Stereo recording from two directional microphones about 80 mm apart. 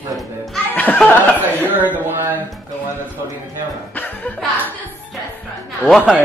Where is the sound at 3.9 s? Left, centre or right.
Centre.